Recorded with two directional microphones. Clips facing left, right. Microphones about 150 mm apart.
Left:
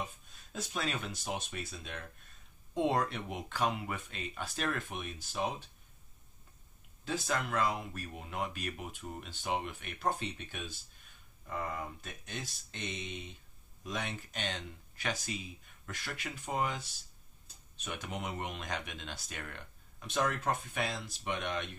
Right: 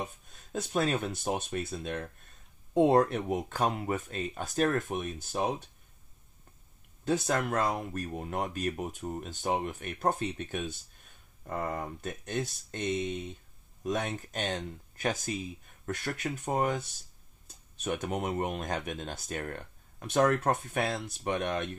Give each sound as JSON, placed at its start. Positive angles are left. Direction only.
{"t": 0.0, "sound": "speech", "side_deg": -50}
{"t": 7.1, "sound": "speech", "side_deg": -50}
{"t": 17.8, "sound": "speech", "side_deg": -50}